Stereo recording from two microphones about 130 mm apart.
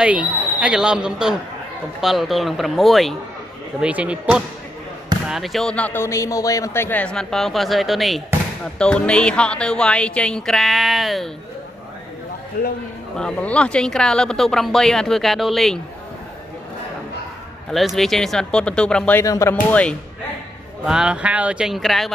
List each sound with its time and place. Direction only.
0.0 s a man's voice: 10° right (ahead or behind); by 6.0 s 10° left (ahead or behind)
6.0 s speech: 25° left (ahead or behind); by 11.2 s centre (ahead or behind)
13.2 s speech: 10° left (ahead or behind)
17.6 s speech: centre (ahead or behind)
19.2 s speech: 25° left (ahead or behind)
19.5 s speech: 10° left (ahead or behind)
20.8 s speech: 5° right (ahead or behind)